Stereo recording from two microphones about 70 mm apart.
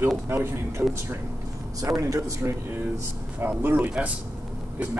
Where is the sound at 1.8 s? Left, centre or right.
Right.